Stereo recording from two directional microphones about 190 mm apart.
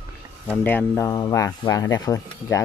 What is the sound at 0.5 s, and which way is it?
Speech, 10° left (ahead or behind).